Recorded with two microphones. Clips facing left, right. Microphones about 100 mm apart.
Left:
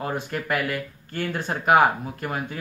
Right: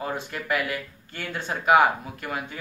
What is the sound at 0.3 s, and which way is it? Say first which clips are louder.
Speech: left 1 dB; 45° left (ahead or behind).